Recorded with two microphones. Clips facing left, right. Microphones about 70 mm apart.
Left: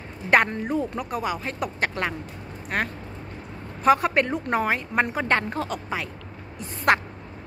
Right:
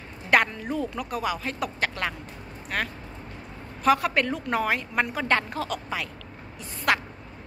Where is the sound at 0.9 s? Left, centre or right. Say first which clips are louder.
Left 1 dB; left.